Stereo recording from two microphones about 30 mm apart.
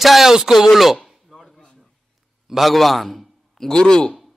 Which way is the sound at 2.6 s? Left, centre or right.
Centre.